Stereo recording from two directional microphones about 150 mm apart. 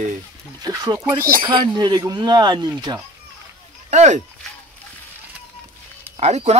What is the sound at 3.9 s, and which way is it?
Speech, 50° right (ahead or behind).